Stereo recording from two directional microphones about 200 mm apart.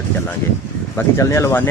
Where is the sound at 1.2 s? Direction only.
15° left (ahead or behind).